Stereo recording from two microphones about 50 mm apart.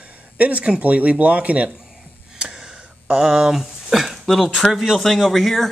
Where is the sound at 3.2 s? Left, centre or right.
Centre.